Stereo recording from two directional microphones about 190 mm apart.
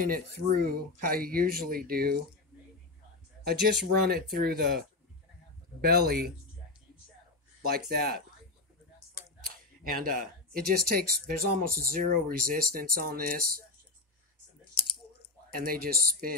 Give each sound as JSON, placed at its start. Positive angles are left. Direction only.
{"t": 0.0, "sound": "speech", "side_deg": -50}
{"t": 3.4, "sound": "speech", "side_deg": -55}
{"t": 5.9, "sound": "speech", "side_deg": -55}
{"t": 7.6, "sound": "speech", "side_deg": -55}
{"t": 9.8, "sound": "speech", "side_deg": -50}
{"t": 15.5, "sound": "speech", "side_deg": -50}